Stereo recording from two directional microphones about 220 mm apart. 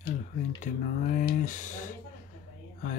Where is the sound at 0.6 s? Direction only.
40° left (ahead or behind).